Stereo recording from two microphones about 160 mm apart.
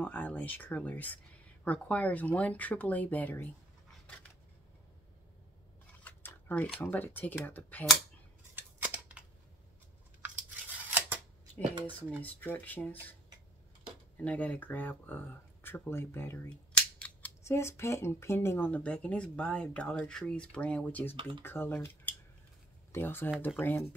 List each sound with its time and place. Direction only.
0.0 s speech: 10° left (ahead or behind)
6.0 s speech: 10° left (ahead or behind)
8.5 s scissors: 10° right (ahead or behind)
10.2 s scissors: 10° right (ahead or behind)
12.2 s speech: 10° left (ahead or behind)
14.2 s speech: 10° left (ahead or behind)